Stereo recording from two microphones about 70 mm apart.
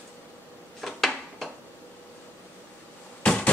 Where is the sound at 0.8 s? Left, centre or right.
Centre.